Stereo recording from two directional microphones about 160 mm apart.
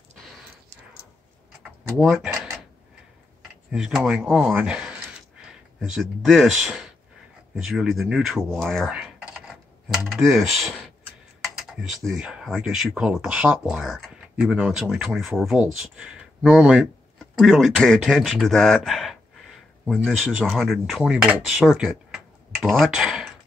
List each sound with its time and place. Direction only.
2.0 s a sound: centre (ahead or behind)
3.7 s speech: centre (ahead or behind)
11.7 s speech: centre (ahead or behind)